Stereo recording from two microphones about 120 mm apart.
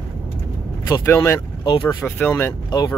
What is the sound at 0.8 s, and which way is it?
Speech, 25° left (ahead or behind).